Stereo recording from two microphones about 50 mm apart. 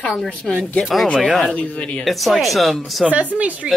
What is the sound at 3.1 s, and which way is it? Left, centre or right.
Speech, right.